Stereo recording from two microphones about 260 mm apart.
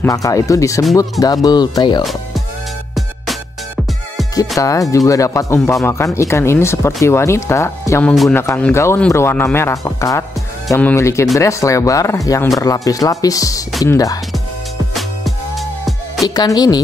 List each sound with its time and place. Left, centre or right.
0.0 s speech: centre
2.9 s music: centre
4.6 s speech: centre
16.3 s speech: centre